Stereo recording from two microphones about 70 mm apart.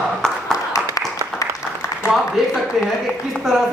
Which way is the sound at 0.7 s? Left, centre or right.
Left.